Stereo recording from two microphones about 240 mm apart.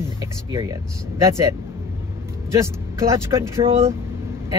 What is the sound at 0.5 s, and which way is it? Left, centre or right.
Speech, centre.